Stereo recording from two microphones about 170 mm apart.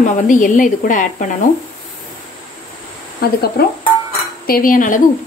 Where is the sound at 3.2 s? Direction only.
65° left (ahead or behind).